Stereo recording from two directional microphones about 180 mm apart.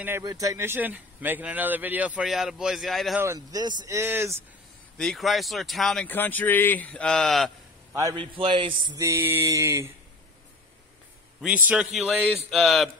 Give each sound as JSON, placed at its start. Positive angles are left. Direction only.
{"t": 0.2, "sound": "a man's voice", "side_deg": -20}
{"t": 3.2, "sound": "a man's voice", "side_deg": -20}
{"t": 4.9, "sound": "speech", "side_deg": 0}
{"t": 7.9, "sound": "a man's voice", "side_deg": -20}
{"t": 8.9, "sound": "a man's voice", "side_deg": -15}
{"t": 11.4, "sound": "speech", "side_deg": -5}